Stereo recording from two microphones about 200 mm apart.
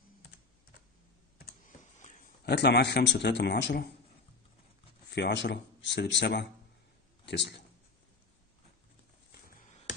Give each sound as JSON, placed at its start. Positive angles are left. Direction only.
{"t": 2.4, "sound": "speech", "side_deg": 55}
{"t": 5.1, "sound": "speech", "side_deg": 60}